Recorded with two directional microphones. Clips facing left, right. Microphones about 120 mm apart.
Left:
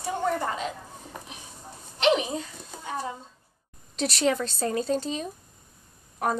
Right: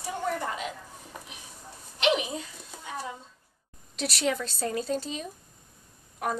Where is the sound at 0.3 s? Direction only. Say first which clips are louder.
Left 3 dB; 35° left (ahead or behind).